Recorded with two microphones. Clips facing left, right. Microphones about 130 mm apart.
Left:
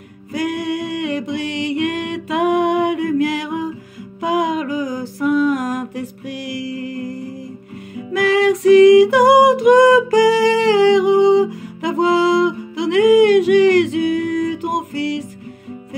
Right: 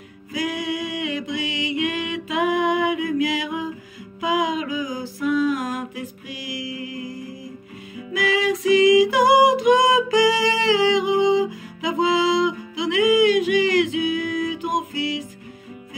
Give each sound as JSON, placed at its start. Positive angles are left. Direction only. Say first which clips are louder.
{"t": 0.3, "sound": "music", "louder": "left 5 dB", "side_deg": 55}